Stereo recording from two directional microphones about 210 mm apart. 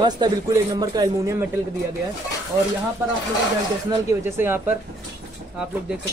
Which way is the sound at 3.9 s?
10° right (ahead or behind).